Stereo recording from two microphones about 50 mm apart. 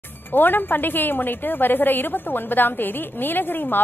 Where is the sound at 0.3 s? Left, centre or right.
Left.